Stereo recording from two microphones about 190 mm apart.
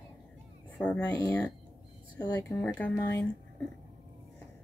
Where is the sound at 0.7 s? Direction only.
5° left (ahead or behind).